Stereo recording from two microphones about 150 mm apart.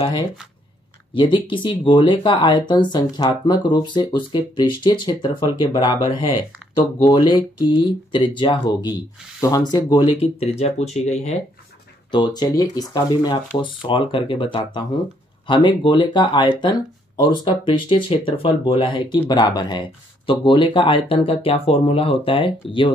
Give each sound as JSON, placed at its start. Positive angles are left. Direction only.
{"t": 1.1, "sound": "speech", "side_deg": 35}
{"t": 7.1, "sound": "speech", "side_deg": 30}
{"t": 10.4, "sound": "speech", "side_deg": 45}
{"t": 12.1, "sound": "speech", "side_deg": 30}